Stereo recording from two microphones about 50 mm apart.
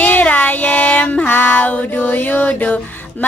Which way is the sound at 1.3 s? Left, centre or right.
Left.